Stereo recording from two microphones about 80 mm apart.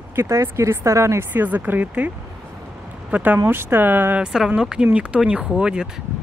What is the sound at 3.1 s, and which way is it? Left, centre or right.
Speech, right.